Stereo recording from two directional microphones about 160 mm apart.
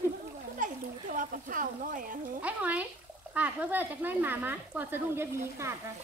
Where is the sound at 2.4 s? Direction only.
10° right (ahead or behind).